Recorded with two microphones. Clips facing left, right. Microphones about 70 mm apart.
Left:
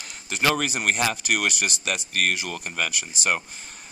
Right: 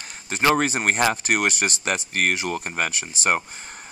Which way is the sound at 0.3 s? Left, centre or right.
Right.